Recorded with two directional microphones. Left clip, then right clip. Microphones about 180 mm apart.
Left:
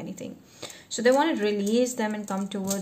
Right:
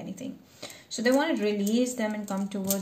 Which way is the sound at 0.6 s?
40° left (ahead or behind).